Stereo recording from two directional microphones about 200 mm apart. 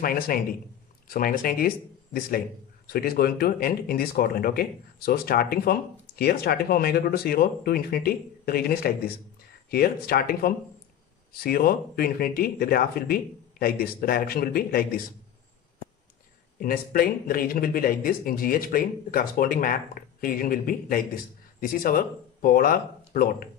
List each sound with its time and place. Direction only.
0.0 s a man's voice: 45° left (ahead or behind)
16.5 s a man's voice: 45° left (ahead or behind)